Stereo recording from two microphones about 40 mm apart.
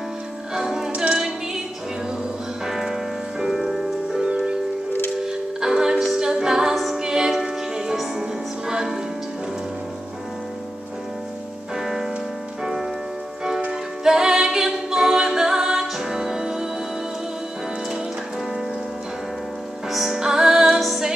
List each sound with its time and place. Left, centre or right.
0.6 s music: centre
2.6 s music: centre
6.1 s a capella: centre
7.0 s music: centre
11.7 s music: centre
14.0 s music: centre
19.9 s music: centre